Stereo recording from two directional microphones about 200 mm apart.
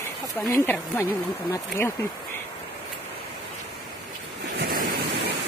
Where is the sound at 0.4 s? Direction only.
5° left (ahead or behind).